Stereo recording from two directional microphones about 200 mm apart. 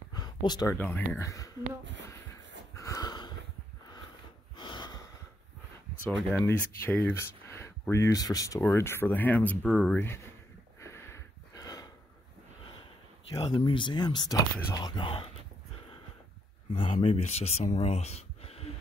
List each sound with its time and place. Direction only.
0.1 s a sound: 20° left (ahead or behind)
0.7 s speech: 10° left (ahead or behind)
2.7 s wheeze: 15° left (ahead or behind)
4.6 s snort: 20° left (ahead or behind)
6.4 s speech: 10° left (ahead or behind)
10.8 s a sound: 15° left (ahead or behind)
13.3 s speech: 25° left (ahead or behind)
16.7 s speech: 25° left (ahead or behind)